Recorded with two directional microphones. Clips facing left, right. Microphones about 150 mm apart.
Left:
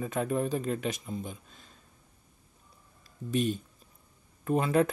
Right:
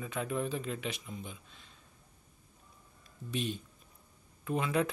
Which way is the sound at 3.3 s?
45° left (ahead or behind).